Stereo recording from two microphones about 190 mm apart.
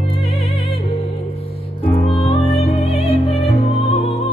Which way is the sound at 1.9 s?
35° left (ahead or behind).